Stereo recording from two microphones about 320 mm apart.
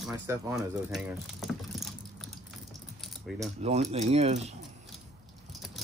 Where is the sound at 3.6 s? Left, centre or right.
Right.